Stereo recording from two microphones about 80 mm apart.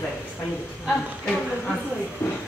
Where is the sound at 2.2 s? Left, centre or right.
Left.